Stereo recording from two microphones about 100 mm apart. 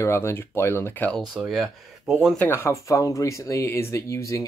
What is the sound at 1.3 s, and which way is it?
Speech, 5° right (ahead or behind).